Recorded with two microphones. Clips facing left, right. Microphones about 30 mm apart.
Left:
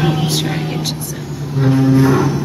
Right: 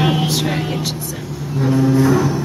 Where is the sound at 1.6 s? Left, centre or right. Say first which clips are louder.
Left 2 dB; centre.